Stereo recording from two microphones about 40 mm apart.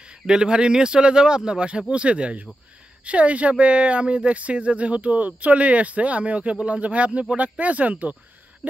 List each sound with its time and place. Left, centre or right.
0.3 s speech: right